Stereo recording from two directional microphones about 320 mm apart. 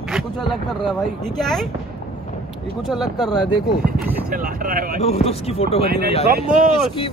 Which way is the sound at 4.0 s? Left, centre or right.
Centre.